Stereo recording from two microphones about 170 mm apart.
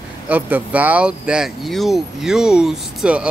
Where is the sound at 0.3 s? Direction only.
10° right (ahead or behind).